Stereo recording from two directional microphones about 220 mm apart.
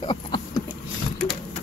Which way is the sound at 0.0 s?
20° left (ahead or behind).